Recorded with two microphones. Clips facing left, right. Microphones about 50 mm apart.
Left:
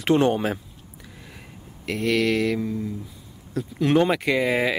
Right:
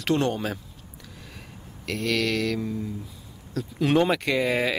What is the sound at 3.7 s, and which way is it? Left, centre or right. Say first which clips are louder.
Speech: left 2 dB; centre.